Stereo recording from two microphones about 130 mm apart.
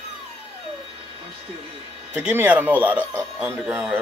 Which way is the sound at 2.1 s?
10° right (ahead or behind).